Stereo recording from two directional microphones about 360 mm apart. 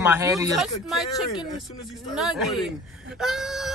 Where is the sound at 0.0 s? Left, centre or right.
Centre.